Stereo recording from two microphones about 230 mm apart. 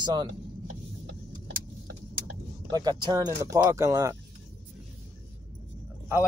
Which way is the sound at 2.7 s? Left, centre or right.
Centre.